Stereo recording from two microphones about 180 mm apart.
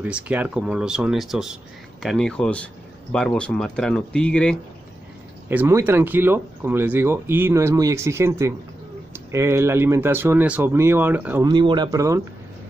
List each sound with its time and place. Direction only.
0.0 s speech: 10° right (ahead or behind)
5.5 s speech: 10° right (ahead or behind)
11.4 s speech: 25° right (ahead or behind)